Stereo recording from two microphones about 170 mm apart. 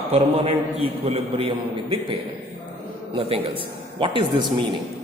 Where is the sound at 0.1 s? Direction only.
40° right (ahead or behind).